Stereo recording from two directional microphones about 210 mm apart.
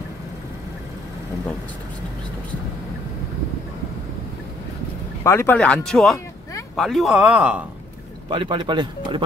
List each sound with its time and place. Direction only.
5.2 s speech: 15° left (ahead or behind); by 7.6 s 5° right (ahead or behind)
8.3 s speech: 25° right (ahead or behind)